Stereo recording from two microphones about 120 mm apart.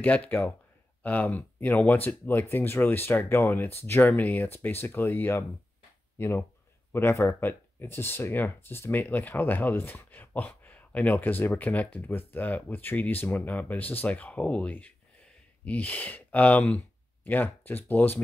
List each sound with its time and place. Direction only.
0.0 s speech: 15° left (ahead or behind)